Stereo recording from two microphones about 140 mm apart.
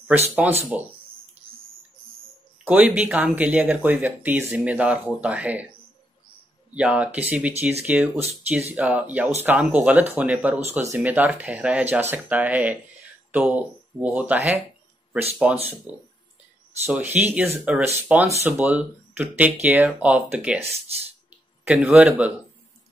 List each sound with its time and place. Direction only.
0.4 s speech: 10° right (ahead or behind)
2.6 s speech: 10° right (ahead or behind)
6.7 s speech: 10° right (ahead or behind)
10.6 s speech: 20° right (ahead or behind)
21.3 s a sound: 10° right (ahead or behind)